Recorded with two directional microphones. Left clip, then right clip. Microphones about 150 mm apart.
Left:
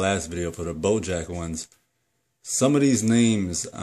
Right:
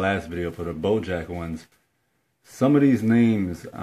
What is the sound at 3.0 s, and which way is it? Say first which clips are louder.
Speech: right 1 dB; 30° left (ahead or behind).